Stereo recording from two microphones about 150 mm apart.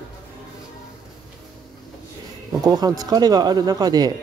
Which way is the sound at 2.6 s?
25° right (ahead or behind).